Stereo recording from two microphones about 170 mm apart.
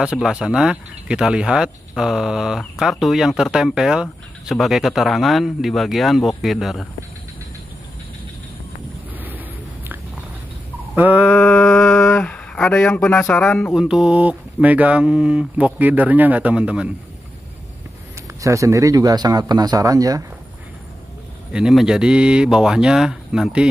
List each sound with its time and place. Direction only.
0.0 s speech: 5° right (ahead or behind)
11.0 s speech: 5° right (ahead or behind)
11.3 s a sound: 5° left (ahead or behind)
13.8 s speech: 5° right (ahead or behind)
18.4 s speech: 20° right (ahead or behind)
21.5 s speech: 5° right (ahead or behind)